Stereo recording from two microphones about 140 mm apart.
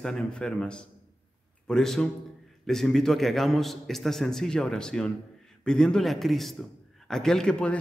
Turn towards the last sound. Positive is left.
turn(degrees=5)  # may be behind; listen again after turning